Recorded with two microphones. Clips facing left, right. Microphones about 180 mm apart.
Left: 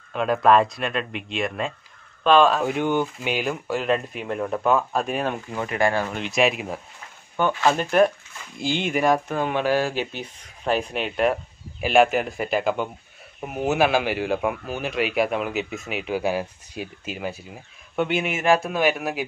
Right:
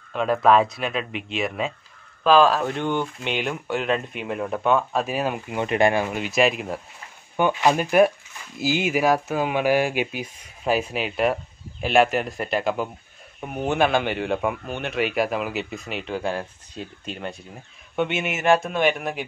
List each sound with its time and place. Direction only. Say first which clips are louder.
0.1 s speech: even; centre (ahead or behind)
5.6 s speech: right 3 dB; 20° right (ahead or behind)
6.1 s speech: right 1 dB; centre (ahead or behind)
7.3 s speech: right 1 dB; 15° right (ahead or behind); by 19.2 s 5° left (ahead or behind)